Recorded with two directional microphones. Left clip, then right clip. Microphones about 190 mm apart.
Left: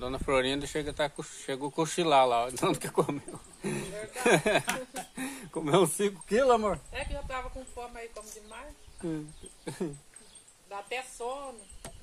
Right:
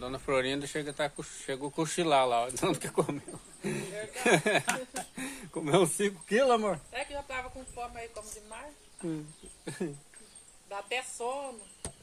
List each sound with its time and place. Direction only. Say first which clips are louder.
0.0 s speech: left 2 dB; 30° left (ahead or behind)
4.6 s speech: right 1 dB; 10° right (ahead or behind)
5.1 s speech: left 2 dB; 25° left (ahead or behind)
6.9 s speech: even; 5° right (ahead or behind)
9.8 s speech: left 1 dB; 25° left (ahead or behind)
10.7 s a woman's voice: right 2 dB; 35° right (ahead or behind)